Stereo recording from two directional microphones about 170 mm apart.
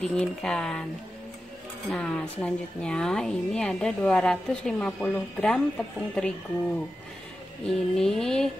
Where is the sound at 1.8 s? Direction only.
10° left (ahead or behind).